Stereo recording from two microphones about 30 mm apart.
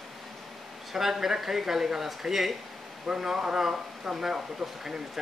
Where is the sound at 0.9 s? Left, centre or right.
Centre.